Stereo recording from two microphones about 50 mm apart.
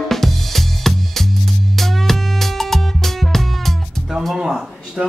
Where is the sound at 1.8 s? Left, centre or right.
Centre.